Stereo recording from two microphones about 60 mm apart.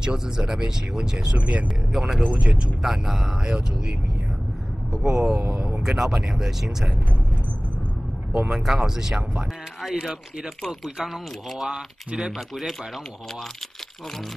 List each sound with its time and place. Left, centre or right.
0.0 s speech: centre
1.9 s speech: centre
2.2 s speech: right
2.8 s speech: centre
4.9 s speech: centre
8.3 s speech: centre
11.5 s speech: centre